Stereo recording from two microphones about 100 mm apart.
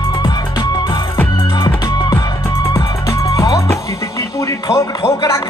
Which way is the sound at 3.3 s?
35° left (ahead or behind).